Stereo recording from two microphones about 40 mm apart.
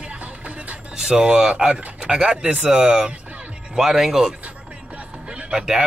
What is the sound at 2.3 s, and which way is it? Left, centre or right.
Speech, right.